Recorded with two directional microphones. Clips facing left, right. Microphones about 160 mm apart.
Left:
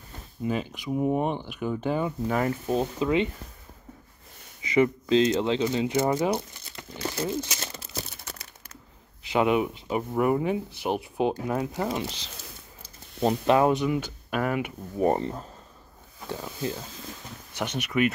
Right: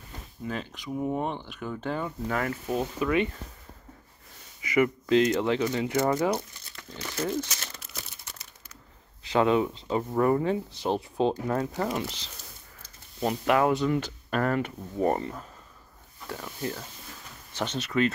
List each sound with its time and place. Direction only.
0.5 s speech: 10° left (ahead or behind)
4.6 s speech: 25° left (ahead or behind)
7.6 s crumpling: 30° left (ahead or behind)
9.3 s speech: 15° left (ahead or behind)
13.8 s speech: 5° left (ahead or behind)